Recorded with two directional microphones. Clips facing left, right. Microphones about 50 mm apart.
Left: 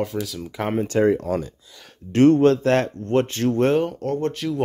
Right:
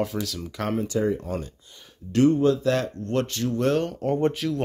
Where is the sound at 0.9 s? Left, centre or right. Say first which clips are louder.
Left 8 dB; left.